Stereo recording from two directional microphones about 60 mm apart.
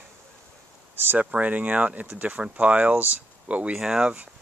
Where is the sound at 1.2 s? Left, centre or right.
Right.